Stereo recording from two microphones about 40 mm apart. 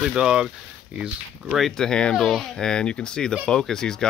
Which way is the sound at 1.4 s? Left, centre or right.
Centre.